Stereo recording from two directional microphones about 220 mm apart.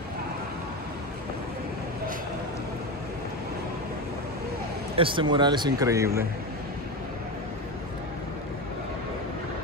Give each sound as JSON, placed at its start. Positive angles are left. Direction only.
{"t": 4.9, "sound": "a man's voice", "side_deg": -25}